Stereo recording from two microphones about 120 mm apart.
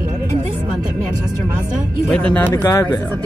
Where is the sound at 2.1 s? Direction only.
10° left (ahead or behind).